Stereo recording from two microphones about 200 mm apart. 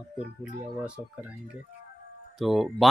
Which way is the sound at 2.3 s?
Centre (ahead or behind).